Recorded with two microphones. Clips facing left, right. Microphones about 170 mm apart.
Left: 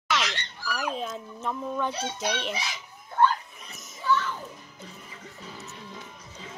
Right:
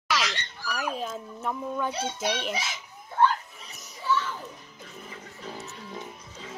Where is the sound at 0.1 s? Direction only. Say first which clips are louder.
Even; centre (ahead or behind).